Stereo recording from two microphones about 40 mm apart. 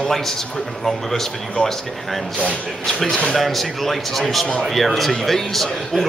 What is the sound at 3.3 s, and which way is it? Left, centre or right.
A woman's voice, centre.